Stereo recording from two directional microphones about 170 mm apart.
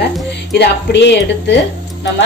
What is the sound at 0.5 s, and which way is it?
Speech, 80° left.